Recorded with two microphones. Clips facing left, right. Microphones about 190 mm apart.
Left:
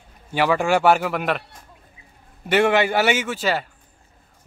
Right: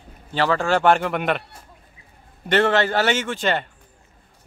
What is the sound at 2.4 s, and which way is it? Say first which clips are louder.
A man's voice: left 1 dB; 10° left (ahead or behind).